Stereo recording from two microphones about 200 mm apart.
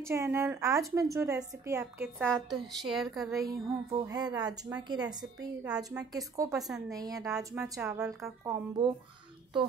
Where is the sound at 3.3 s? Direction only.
15° right (ahead or behind).